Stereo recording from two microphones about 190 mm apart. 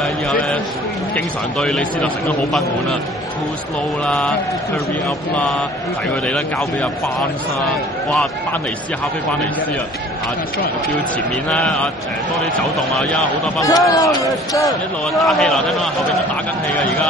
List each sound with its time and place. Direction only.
0.0 s a man's voice: centre (ahead or behind)
4.0 s a man's voice: centre (ahead or behind)
11.4 s a man's voice: 5° left (ahead or behind)
13.6 s a man's voice: 20° left (ahead or behind)
15.1 s a man's voice: centre (ahead or behind)